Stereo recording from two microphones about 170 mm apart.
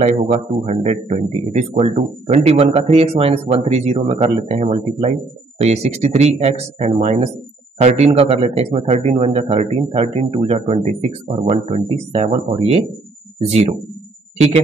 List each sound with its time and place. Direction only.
0.0 s a man's voice: 40° right (ahead or behind)